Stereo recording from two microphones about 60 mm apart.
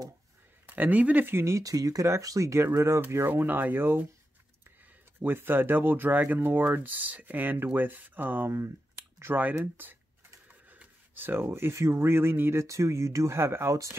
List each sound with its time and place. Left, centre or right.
0.7 s speech: right
1.3 s speech: right
1.6 s speech: right
2.0 s speech: right
3.3 s speech: right
5.2 s speech: right
8.5 s speech: right
9.6 s speech: right
11.1 s speech: right
13.4 s speech: right